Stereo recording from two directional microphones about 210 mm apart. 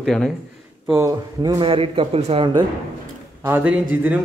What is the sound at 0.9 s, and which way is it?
A man's voice, 15° right (ahead or behind).